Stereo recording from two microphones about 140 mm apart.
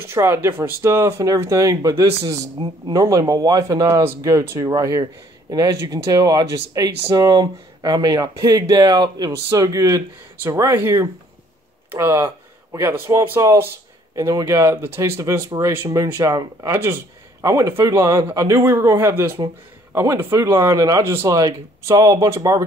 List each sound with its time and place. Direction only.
0.0 s speech: 20° right (ahead or behind)